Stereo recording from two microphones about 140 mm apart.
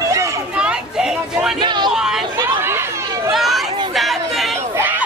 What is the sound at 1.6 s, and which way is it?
Vehicle, 30° right (ahead or behind).